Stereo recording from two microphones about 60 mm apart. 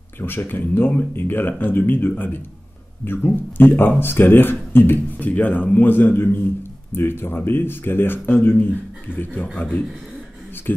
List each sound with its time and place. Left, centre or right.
0.2 s a man's voice: left